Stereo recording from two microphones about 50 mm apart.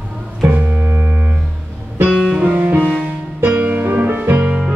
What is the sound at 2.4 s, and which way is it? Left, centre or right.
Music, right.